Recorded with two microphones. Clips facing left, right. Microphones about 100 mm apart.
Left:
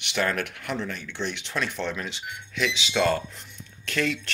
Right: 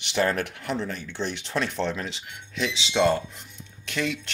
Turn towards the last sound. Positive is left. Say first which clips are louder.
# left 2 dB
turn(degrees=-15)  # may be behind; listen again after turning